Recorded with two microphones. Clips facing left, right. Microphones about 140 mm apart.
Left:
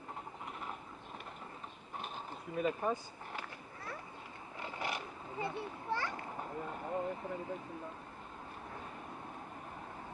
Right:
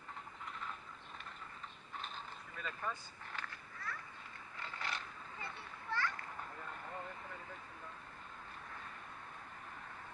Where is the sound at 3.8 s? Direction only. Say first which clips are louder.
Left 1 dB; 25° left (ahead or behind).